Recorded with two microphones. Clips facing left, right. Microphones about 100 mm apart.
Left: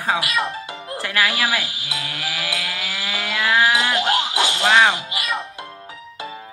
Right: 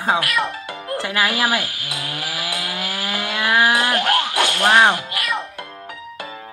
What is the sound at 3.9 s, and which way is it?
Music, 20° left (ahead or behind).